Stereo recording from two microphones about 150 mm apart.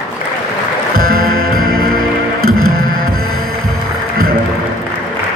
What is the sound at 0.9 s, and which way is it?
Music, 80° right.